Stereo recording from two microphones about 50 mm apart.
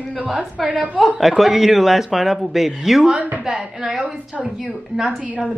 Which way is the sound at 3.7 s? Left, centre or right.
Centre.